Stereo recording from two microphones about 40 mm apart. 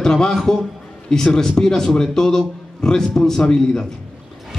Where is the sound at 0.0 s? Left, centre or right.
Centre.